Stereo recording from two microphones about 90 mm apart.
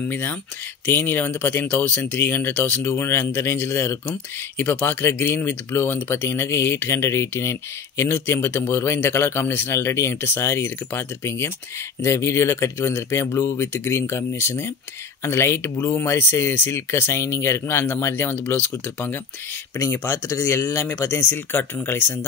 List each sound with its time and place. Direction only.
0.0 s speech: 20° left (ahead or behind)